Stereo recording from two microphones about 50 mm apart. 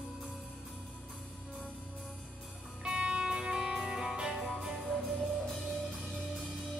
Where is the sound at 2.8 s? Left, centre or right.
Centre.